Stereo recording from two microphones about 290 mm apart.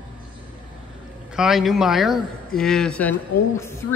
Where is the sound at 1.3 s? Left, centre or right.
Centre.